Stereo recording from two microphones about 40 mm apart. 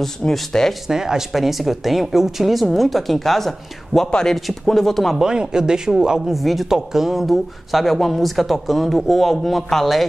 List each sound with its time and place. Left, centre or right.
0.5 s speech: centre
0.8 s speech: centre
5.2 s speech: centre
6.3 s speech: centre